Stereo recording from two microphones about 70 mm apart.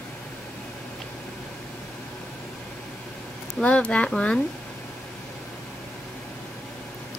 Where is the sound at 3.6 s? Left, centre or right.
Centre.